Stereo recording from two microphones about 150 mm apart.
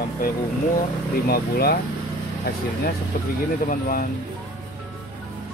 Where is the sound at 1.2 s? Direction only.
90° left.